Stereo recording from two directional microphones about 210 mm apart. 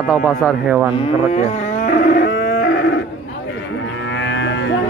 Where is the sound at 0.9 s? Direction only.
30° left (ahead or behind); by 3.0 s 55° left (ahead or behind).